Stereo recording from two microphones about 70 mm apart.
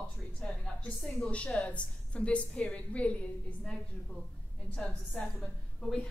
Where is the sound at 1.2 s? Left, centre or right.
Centre.